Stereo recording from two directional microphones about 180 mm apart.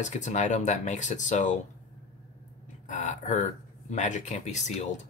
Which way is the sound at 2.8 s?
45° left (ahead or behind).